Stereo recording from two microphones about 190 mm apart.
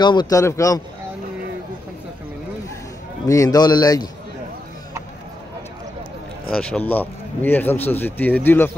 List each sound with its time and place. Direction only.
0.0 s a man's voice: 25° left (ahead or behind)
3.3 s a man's voice: 20° left (ahead or behind)
6.5 s a man's voice: 5° left (ahead or behind)